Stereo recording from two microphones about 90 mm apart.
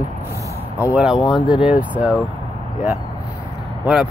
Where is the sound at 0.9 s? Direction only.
5° right (ahead or behind).